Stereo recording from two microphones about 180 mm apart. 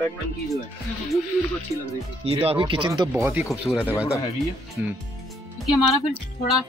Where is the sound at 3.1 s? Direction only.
10° right (ahead or behind).